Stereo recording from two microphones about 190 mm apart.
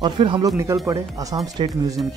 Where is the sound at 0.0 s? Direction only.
25° right (ahead or behind).